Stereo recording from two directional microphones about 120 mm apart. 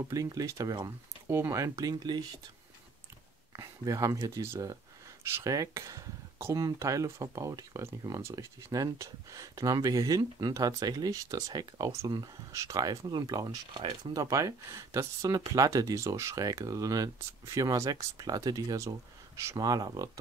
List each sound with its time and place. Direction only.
0.1 s speech: 30° right (ahead or behind)
3.5 s speech: 30° right (ahead or behind)